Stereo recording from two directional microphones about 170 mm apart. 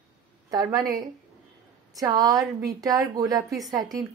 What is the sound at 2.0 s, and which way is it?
A woman's voice, 20° right (ahead or behind).